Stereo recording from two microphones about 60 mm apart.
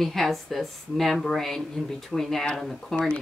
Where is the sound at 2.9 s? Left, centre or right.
Centre.